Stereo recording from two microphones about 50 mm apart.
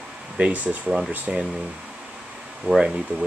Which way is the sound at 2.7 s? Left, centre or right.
Centre.